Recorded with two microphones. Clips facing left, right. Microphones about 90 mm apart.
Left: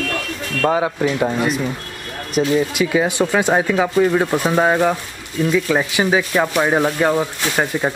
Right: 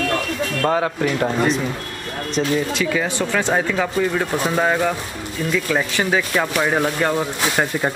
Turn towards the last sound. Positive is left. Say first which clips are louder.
# left 1 dB
turn(degrees=5)  # may be behind; listen again after turning